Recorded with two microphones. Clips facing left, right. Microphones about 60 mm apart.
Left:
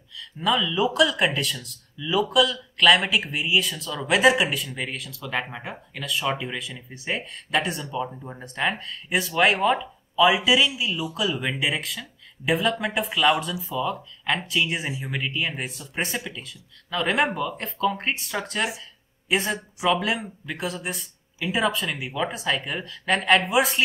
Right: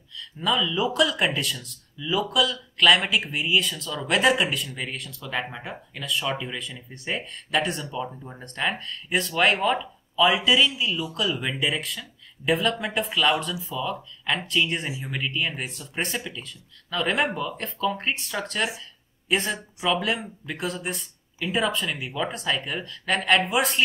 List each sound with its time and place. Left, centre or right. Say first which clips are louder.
0.2 s speech: left 1 dB; centre
18.8 s a sound: even; centre
20.0 s speech: even; centre